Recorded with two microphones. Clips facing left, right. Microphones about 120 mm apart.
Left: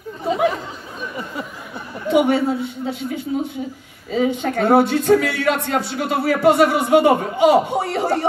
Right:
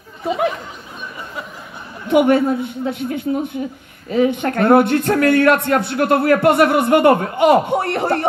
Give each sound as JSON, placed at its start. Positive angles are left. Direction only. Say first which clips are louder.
{"t": 2.0, "sound": "a man's voice", "louder": "right 3 dB", "side_deg": -55}